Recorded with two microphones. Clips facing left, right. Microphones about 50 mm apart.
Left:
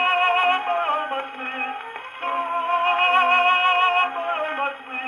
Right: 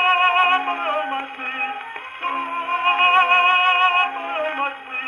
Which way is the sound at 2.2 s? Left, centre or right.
Right.